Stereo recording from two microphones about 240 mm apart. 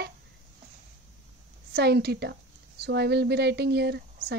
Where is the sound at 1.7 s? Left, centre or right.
Right.